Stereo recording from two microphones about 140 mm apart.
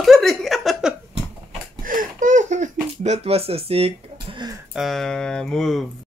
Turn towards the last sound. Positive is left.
turn(degrees=0)  # may be behind; listen again after turning